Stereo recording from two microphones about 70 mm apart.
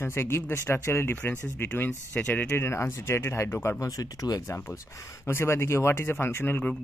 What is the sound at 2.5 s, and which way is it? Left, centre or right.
Speech, left.